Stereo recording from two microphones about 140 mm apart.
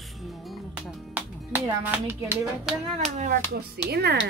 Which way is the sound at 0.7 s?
10° right (ahead or behind).